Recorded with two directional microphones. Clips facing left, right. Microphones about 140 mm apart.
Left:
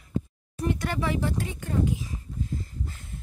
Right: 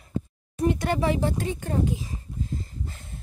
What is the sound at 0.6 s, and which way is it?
Speech, 20° right (ahead or behind).